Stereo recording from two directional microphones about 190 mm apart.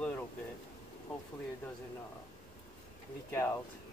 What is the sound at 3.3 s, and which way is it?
Speech, 15° left (ahead or behind).